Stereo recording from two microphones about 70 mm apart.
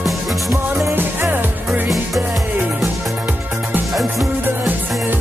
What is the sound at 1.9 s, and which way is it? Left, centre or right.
Music, centre.